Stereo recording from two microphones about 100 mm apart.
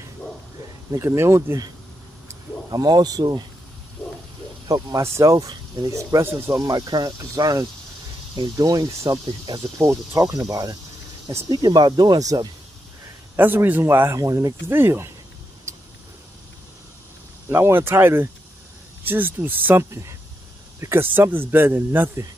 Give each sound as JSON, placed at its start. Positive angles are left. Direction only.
{"t": 1.0, "sound": "speech", "side_deg": -25}
{"t": 2.7, "sound": "speech", "side_deg": -40}
{"t": 4.6, "sound": "speech", "side_deg": -35}
{"t": 6.6, "sound": "speech", "side_deg": -40}
{"t": 13.4, "sound": "speech", "side_deg": -20}
{"t": 17.5, "sound": "speech", "side_deg": -25}